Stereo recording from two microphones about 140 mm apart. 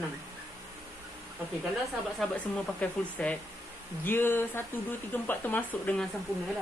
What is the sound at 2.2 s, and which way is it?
Speech, 10° left (ahead or behind).